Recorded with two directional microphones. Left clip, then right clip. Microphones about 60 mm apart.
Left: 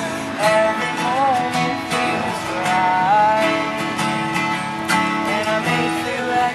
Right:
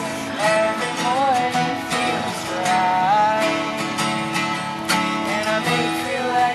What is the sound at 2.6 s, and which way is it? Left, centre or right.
Music, right.